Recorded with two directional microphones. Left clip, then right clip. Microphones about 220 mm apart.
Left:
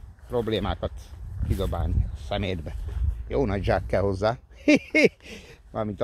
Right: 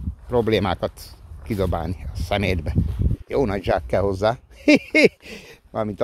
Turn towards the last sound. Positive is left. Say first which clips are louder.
# right 5 dB
turn(degrees=-30)  # may be behind; listen again after turning